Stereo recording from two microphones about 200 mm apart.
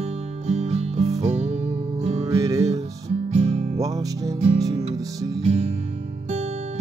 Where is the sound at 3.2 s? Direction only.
30° right (ahead or behind).